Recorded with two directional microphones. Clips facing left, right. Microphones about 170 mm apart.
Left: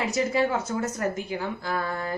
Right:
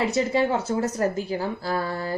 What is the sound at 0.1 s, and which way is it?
A woman's voice, 30° right (ahead or behind).